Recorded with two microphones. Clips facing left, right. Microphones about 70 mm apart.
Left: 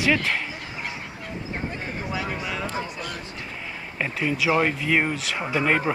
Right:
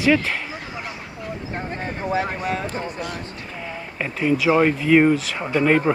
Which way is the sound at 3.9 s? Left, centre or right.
Centre.